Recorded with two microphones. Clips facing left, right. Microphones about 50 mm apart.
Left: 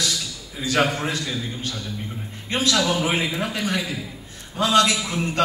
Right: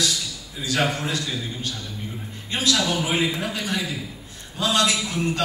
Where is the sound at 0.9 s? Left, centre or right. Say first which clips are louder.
Left 1 dB; left.